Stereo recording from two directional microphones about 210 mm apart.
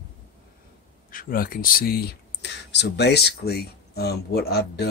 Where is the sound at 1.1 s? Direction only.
40° left (ahead or behind).